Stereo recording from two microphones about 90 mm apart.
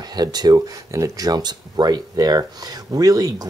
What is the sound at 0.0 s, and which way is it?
Speech, 50° right (ahead or behind).